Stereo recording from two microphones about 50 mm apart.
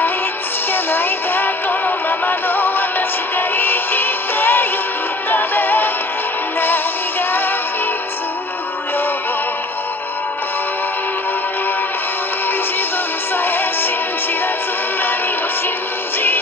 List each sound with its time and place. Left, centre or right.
0.9 s music: left
13.4 s music: left